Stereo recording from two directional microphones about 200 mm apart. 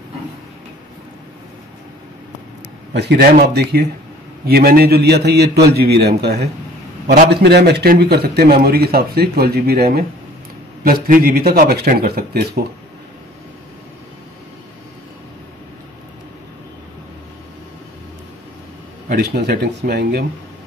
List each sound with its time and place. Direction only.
2.9 s a man's voice: 55° right (ahead or behind)
19.0 s a man's voice: 50° right (ahead or behind)